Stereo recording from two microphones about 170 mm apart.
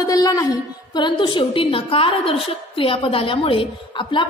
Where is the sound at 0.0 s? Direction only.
20° left (ahead or behind).